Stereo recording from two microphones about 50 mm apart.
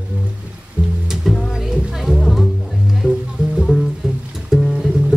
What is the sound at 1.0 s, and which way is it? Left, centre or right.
Music, centre.